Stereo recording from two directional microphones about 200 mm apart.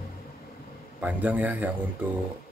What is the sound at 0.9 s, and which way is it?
Speech, 10° right (ahead or behind).